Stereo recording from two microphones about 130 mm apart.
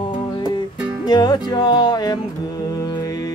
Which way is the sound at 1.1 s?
30° left (ahead or behind).